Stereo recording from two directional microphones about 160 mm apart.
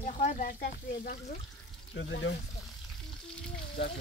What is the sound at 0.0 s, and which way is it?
Speech, 45° left (ahead or behind).